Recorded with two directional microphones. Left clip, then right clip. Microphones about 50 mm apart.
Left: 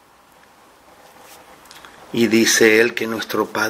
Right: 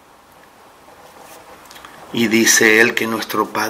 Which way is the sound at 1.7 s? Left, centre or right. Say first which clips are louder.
Right 1 dB; left.